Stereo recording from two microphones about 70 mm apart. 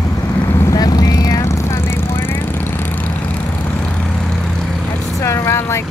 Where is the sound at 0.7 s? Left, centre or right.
Left.